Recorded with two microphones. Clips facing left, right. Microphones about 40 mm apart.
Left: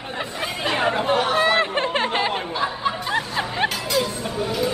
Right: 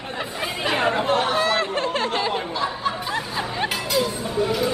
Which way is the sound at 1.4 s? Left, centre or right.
Left.